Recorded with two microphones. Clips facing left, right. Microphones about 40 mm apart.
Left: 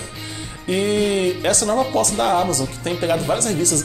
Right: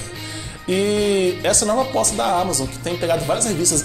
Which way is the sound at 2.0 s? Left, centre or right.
Left.